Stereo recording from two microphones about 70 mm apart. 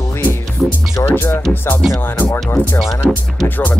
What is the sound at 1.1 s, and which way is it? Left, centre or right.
Music, left.